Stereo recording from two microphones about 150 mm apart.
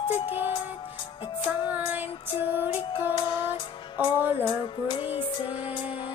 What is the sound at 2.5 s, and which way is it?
Music, 15° right (ahead or behind).